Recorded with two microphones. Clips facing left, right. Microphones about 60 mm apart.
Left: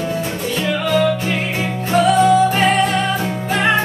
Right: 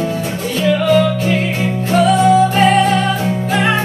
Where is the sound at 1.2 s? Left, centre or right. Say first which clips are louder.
Right 4 dB; centre.